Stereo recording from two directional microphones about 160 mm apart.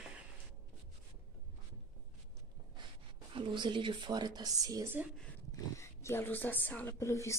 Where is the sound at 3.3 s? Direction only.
30° right (ahead or behind); by 5.1 s 15° right (ahead or behind).